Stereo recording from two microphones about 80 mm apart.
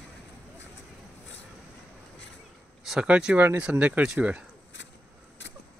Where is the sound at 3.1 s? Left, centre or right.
Centre.